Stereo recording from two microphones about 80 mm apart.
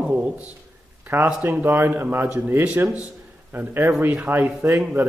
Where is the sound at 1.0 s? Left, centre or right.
Right.